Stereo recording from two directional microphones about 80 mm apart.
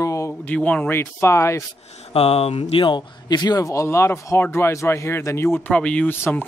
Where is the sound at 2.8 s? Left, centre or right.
Left.